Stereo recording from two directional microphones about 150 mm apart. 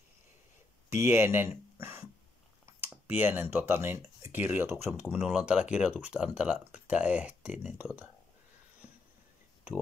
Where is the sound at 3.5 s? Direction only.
15° right (ahead or behind).